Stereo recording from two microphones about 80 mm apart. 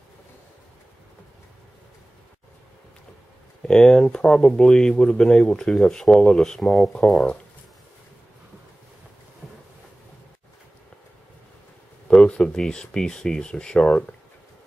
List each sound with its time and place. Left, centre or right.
3.6 s speech: centre
9.4 s boat: centre
12.1 s speech: centre